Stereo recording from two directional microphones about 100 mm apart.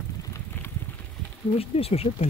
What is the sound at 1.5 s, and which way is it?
Speech, 85° left.